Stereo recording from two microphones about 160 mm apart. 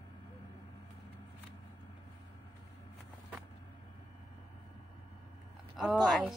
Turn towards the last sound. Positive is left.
turn(degrees=0)  # may be behind; listen again after turning